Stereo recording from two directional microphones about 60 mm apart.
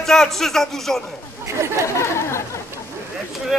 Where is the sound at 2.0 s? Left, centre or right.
Left.